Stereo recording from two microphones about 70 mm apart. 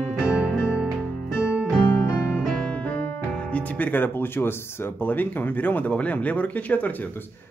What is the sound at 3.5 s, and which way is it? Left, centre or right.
Music, left.